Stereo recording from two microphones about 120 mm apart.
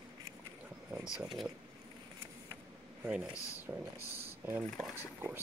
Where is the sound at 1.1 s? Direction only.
5° right (ahead or behind).